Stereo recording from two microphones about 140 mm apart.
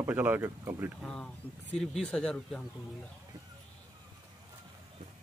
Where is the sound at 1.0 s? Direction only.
5° left (ahead or behind).